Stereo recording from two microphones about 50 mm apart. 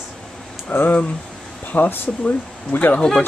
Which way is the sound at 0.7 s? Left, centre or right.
Left.